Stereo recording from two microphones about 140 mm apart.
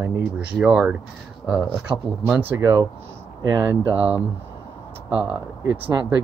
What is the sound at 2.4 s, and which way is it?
Speech, 20° right (ahead or behind).